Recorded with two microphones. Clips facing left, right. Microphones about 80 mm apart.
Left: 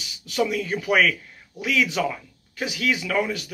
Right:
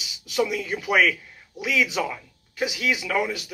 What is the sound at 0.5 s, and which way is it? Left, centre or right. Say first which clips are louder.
Speech: left 2 dB; centre.